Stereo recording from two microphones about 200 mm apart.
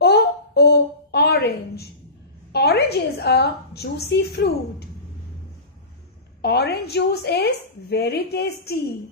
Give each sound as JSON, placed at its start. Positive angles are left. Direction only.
{"t": 0.0, "sound": "a sound", "side_deg": 55}
{"t": 2.5, "sound": "a woman's voice", "side_deg": 55}
{"t": 6.4, "sound": "a woman's voice", "side_deg": 55}